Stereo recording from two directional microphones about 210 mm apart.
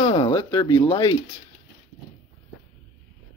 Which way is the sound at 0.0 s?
25° left (ahead or behind).